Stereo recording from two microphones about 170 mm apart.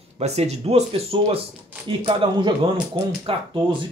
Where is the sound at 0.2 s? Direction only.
40° right (ahead or behind).